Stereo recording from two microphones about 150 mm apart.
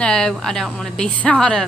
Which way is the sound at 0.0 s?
5° left (ahead or behind).